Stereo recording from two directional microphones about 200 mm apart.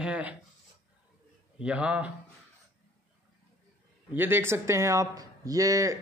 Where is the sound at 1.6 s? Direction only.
5° right (ahead or behind).